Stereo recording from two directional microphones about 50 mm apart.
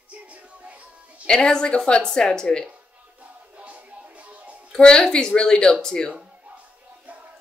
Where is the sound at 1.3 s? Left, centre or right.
Centre.